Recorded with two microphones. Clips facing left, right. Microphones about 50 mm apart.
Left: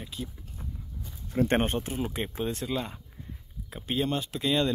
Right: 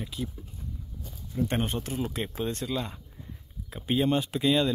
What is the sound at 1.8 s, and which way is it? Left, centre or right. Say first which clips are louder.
Speech: even; centre.